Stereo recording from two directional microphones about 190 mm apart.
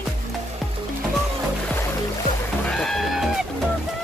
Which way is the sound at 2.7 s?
Centre (ahead or behind).